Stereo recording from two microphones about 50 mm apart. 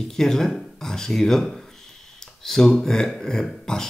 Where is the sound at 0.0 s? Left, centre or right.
Centre.